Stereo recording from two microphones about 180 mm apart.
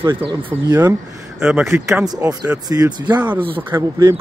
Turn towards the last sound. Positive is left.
turn(degrees=-20)  # may be behind; listen again after turning